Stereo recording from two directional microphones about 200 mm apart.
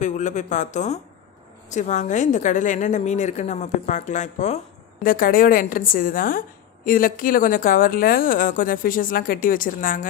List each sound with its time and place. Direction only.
0.0 s a woman's voice: 35° left (ahead or behind)